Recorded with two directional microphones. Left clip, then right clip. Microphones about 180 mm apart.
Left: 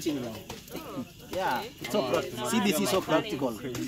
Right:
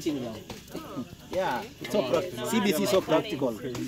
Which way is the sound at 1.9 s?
Centre (ahead or behind).